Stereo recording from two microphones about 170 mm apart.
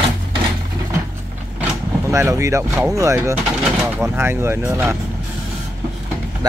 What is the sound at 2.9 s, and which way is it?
Speech, 15° right (ahead or behind).